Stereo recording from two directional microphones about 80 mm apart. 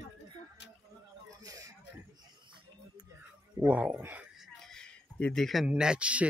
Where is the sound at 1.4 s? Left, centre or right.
Right.